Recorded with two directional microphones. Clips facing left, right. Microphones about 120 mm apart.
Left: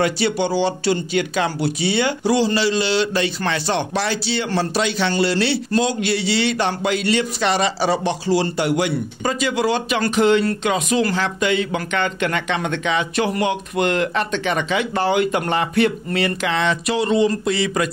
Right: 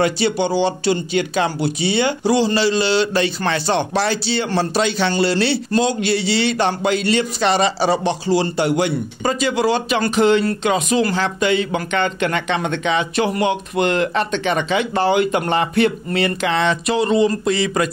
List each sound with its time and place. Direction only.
0.0 s speech: 25° right (ahead or behind)